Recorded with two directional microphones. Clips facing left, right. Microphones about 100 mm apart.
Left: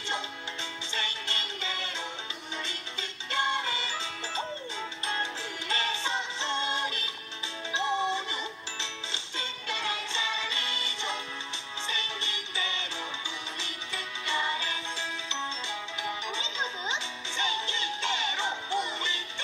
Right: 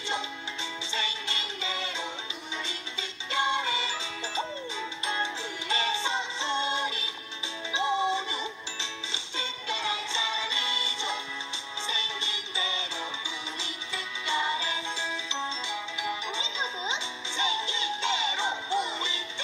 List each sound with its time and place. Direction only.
1.4 s music: 20° right (ahead or behind)
2.6 s music: 50° left (ahead or behind)
3.4 s music: 20° right (ahead or behind)
5.0 s music: 20° right (ahead or behind)